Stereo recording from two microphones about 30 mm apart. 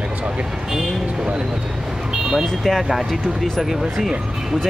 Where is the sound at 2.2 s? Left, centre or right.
Centre.